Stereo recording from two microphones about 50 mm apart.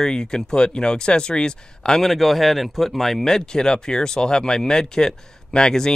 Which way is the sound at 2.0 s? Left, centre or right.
Centre.